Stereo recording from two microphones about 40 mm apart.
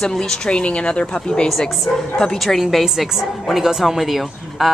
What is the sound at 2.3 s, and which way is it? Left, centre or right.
Speech, centre.